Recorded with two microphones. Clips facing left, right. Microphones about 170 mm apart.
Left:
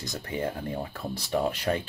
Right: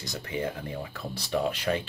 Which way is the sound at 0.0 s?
40° left (ahead or behind).